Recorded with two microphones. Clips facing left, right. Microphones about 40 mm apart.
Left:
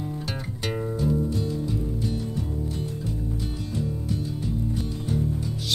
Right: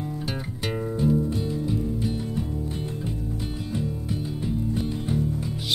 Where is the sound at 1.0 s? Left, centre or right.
Centre.